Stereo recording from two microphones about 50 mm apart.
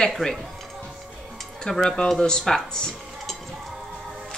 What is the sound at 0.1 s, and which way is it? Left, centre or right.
Music, centre.